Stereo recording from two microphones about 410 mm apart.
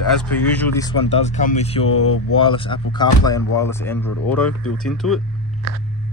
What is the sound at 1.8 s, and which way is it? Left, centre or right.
Speech, left.